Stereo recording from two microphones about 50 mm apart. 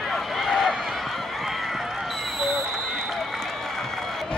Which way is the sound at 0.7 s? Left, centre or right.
Centre.